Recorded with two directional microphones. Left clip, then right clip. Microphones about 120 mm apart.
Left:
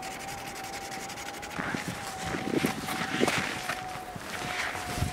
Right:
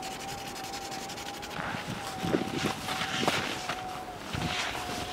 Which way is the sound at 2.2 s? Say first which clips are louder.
Even; centre (ahead or behind).